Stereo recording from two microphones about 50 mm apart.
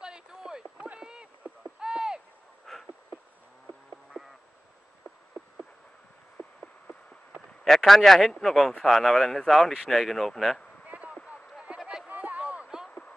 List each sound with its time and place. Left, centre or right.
0.0 s a sound: centre
0.9 s clip-clop: centre
1.4 s owl: centre
2.7 s insect: centre
7.6 s speech: centre
10.9 s a sound: right